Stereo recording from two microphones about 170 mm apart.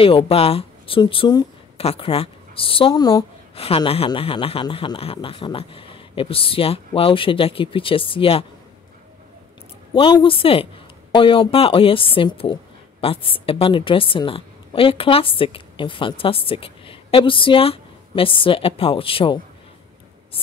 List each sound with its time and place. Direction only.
0.0 s speech: 35° left (ahead or behind)
3.5 s a woman's voice: 35° left (ahead or behind)
9.9 s a woman's voice: 30° left (ahead or behind)